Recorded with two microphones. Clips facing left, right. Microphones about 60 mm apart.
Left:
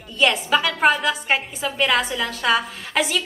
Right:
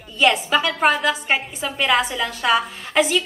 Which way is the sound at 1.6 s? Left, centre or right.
Centre.